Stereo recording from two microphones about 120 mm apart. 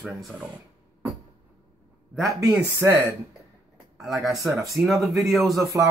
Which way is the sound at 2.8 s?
20° right (ahead or behind).